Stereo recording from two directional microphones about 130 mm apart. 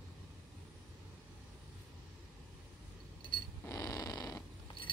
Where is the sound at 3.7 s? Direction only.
25° left (ahead or behind).